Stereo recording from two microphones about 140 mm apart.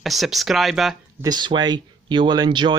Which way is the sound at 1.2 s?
30° right (ahead or behind).